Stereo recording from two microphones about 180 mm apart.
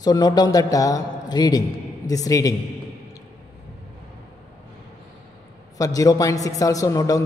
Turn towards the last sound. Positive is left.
turn(degrees=20)  # may be behind; listen again after turning